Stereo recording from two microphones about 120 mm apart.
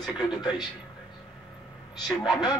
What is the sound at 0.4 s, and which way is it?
Speech, 35° left (ahead or behind).